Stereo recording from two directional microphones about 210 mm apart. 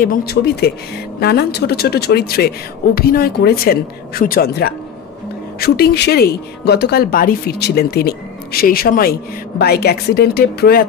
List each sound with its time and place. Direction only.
0.0 s speech: 45° left (ahead or behind)